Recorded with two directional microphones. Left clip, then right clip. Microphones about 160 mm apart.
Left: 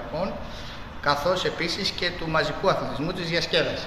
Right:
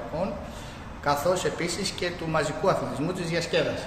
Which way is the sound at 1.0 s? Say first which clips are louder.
Left 1 dB; 20° right (ahead or behind).